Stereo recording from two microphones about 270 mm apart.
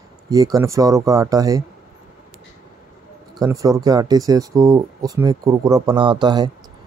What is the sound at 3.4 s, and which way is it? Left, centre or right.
Speech, centre.